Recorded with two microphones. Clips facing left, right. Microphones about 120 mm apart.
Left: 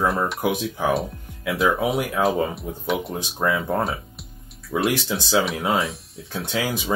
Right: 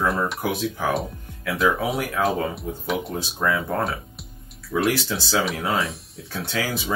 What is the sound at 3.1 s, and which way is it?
Speech, 20° left (ahead or behind).